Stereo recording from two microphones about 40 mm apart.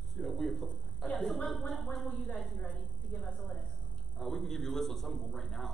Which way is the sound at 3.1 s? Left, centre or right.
Centre.